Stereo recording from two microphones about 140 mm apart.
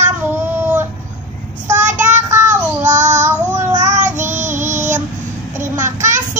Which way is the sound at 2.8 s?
60° right (ahead or behind).